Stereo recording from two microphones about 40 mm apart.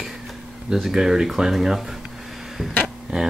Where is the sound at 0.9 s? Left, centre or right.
Centre.